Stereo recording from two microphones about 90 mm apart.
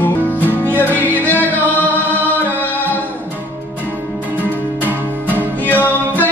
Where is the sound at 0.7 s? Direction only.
20° right (ahead or behind).